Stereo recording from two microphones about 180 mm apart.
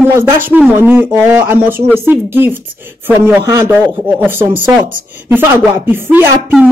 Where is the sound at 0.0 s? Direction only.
15° right (ahead or behind).